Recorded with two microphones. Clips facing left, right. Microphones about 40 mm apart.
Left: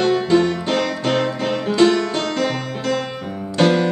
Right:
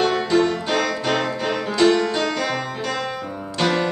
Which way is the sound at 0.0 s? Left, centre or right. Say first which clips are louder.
Left 2 dB; centre.